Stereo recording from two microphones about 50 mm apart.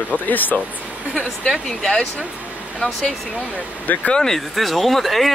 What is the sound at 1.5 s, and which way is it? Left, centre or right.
Speech, centre.